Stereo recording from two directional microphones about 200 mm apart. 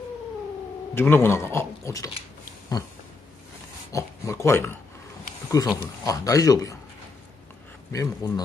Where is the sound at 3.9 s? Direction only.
15° left (ahead or behind).